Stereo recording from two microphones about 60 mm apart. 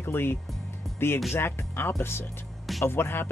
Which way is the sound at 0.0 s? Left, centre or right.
Left.